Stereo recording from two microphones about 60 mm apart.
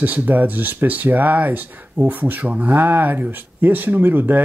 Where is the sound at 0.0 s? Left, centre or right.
Right.